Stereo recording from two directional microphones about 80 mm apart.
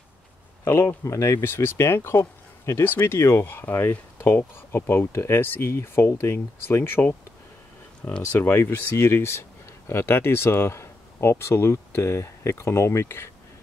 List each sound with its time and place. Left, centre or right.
0.7 s speech: left